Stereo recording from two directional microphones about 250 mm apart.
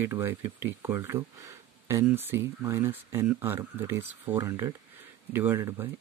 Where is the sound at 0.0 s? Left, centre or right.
Centre.